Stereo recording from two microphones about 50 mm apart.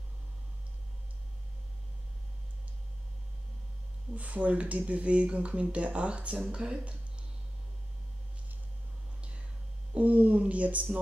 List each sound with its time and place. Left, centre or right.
4.1 s speech: right
9.9 s speech: right